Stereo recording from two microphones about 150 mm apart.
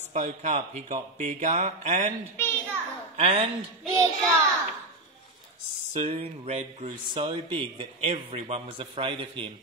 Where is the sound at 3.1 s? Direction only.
40° right (ahead or behind).